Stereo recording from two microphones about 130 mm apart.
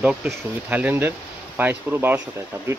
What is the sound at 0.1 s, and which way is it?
Speech, 10° right (ahead or behind).